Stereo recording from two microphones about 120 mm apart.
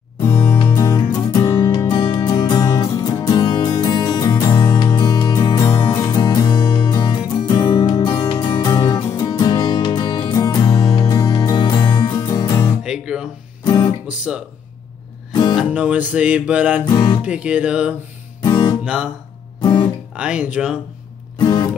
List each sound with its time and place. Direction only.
0.2 s music: 30° left (ahead or behind)
8.5 s music: 35° left (ahead or behind)
12.8 s guitar: 5° right (ahead or behind)
13.7 s guitar: 40° left (ahead or behind)
15.7 s music: 10° right (ahead or behind)
16.8 s speech: 40° left (ahead or behind)
17.2 s music: 10° right (ahead or behind)
18.4 s guitar: 35° left (ahead or behind)
20.2 s music: 10° right (ahead or behind)
21.4 s music: 35° left (ahead or behind)